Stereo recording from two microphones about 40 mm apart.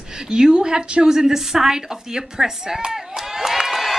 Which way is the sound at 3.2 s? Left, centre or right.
Centre.